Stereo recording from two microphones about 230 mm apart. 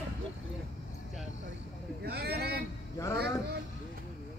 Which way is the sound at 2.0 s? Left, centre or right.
Right.